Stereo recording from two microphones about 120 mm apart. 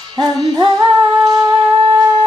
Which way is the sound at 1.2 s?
35° right (ahead or behind).